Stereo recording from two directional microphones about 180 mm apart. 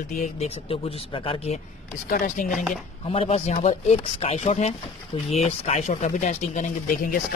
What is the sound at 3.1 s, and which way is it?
Speech, 35° left (ahead or behind).